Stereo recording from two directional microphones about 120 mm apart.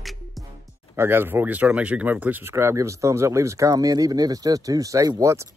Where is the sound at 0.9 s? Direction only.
20° right (ahead or behind).